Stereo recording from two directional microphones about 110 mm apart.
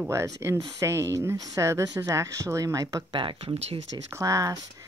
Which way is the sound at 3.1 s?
50° right (ahead or behind).